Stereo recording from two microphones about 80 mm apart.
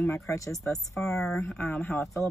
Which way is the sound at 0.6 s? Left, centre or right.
Centre.